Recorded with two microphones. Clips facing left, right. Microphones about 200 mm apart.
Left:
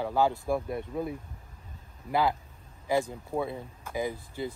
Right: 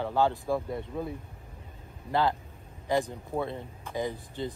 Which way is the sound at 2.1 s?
10° left (ahead or behind).